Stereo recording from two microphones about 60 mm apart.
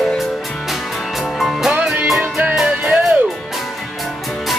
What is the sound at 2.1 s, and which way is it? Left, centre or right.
Music, centre.